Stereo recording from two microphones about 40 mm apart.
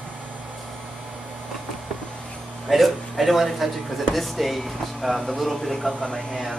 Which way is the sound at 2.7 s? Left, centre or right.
Centre.